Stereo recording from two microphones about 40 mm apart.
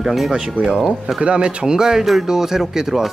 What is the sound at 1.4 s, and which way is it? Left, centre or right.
Speech, centre.